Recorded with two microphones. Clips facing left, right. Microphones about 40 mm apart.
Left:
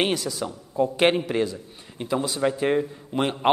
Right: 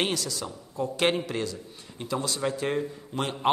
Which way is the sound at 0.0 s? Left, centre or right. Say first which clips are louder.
Left 4 dB; centre.